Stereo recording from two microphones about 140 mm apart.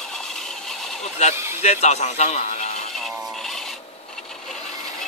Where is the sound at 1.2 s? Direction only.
55° left (ahead or behind).